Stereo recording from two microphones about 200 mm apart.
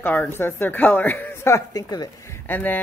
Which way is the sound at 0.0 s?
10° left (ahead or behind).